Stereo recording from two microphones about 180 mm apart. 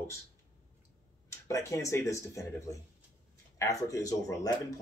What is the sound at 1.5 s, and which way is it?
Speech, 15° left (ahead or behind).